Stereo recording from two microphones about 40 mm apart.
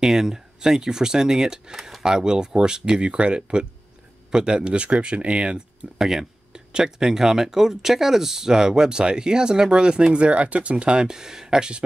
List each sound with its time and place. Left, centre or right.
0.0 s speech: centre
5.9 s speech: centre